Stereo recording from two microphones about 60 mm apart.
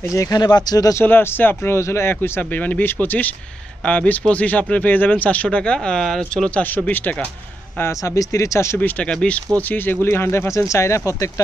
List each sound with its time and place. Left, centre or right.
0.1 s speech: left
1.0 s speech: left
2.5 s speech: left; by 6.5 s centre
8.0 s speech: left
8.7 s speech: left
9.6 s speech: left